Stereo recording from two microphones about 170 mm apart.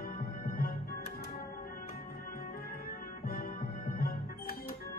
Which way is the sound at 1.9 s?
60° left (ahead or behind).